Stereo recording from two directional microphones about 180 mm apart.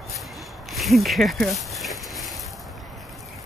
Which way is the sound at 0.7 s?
Centre (ahead or behind).